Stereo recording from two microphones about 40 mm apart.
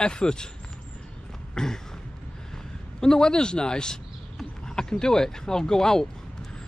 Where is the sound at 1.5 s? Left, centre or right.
Centre.